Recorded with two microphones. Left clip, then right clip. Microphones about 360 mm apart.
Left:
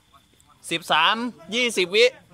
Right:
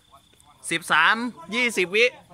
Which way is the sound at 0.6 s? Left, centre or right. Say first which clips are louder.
Right 1 dB; centre.